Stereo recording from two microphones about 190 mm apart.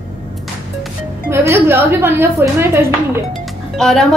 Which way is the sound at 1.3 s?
15° right (ahead or behind).